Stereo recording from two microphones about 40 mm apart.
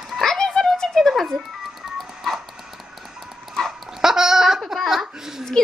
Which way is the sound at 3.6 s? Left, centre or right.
Centre.